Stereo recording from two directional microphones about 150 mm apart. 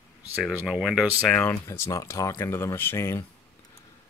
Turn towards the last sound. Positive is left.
turn(degrees=15)  # may be behind; listen again after turning